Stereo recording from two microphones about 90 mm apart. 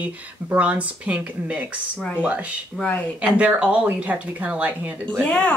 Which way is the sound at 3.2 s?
15° right (ahead or behind).